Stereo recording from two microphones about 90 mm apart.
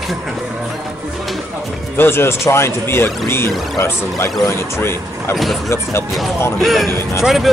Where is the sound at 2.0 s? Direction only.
25° left (ahead or behind).